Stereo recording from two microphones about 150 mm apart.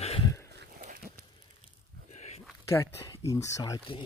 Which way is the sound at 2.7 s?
20° left (ahead or behind).